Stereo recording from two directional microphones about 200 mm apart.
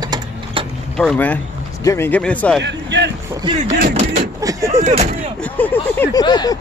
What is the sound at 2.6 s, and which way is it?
Speech, 60° right (ahead or behind).